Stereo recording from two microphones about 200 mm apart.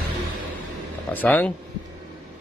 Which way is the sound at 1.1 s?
10° left (ahead or behind).